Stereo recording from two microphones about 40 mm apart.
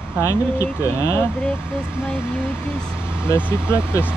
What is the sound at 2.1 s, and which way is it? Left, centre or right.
Speech, left.